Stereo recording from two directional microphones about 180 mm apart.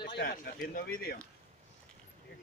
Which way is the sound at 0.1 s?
60° left (ahead or behind).